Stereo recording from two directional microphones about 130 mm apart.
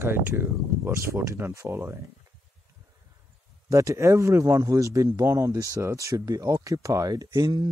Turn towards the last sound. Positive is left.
turn(degrees=-30)  # may be behind; listen again after turning